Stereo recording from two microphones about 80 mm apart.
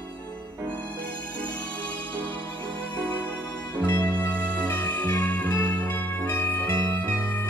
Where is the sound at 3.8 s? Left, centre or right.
Left.